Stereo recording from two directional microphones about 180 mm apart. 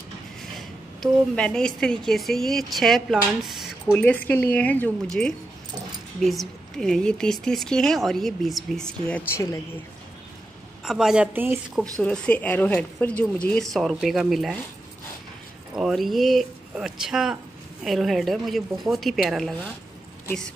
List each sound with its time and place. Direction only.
0.6 s a sound: 5° left (ahead or behind)
1.8 s a woman's voice: 5° left (ahead or behind)
10.9 s a woman's voice: centre (ahead or behind)
12.0 s speech: 5° left (ahead or behind)
15.7 s a woman's voice: centre (ahead or behind)